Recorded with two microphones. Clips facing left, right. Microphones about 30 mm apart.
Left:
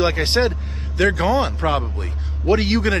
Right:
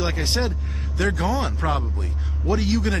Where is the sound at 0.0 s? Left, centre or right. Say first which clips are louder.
Left 7 dB; left.